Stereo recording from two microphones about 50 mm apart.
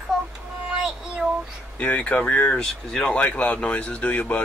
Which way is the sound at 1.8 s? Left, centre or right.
Left.